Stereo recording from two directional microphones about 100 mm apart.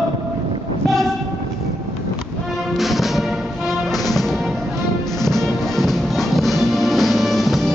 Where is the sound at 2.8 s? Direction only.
Centre (ahead or behind).